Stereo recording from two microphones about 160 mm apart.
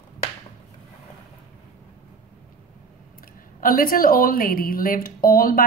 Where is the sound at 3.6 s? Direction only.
60° left (ahead or behind).